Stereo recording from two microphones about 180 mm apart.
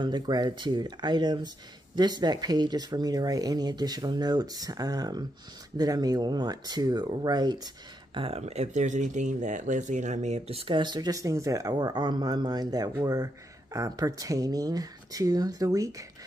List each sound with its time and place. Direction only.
0.0 s speech: 25° right (ahead or behind)